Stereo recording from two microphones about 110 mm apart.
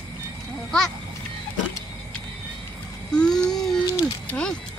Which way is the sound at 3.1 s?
5° left (ahead or behind).